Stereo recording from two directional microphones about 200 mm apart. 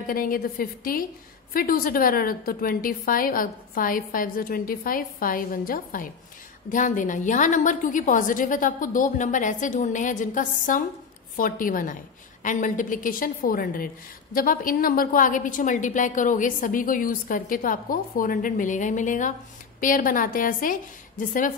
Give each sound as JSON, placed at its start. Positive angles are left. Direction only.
{"t": 0.0, "sound": "a woman's voice", "side_deg": 45}